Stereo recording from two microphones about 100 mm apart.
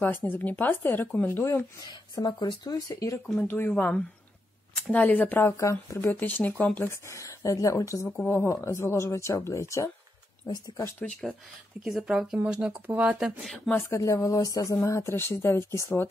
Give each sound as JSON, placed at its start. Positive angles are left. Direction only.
{"t": 0.0, "sound": "speech", "side_deg": 20}
{"t": 1.9, "sound": "speech", "side_deg": 45}
{"t": 3.3, "sound": "speech", "side_deg": 20}
{"t": 5.6, "sound": "speech", "side_deg": 30}
{"t": 6.9, "sound": "speech", "side_deg": 30}
{"t": 10.4, "sound": "speech", "side_deg": 50}
{"t": 11.0, "sound": "speech", "side_deg": 15}
{"t": 12.0, "sound": "speech", "side_deg": -5}
{"t": 13.7, "sound": "speech", "side_deg": 25}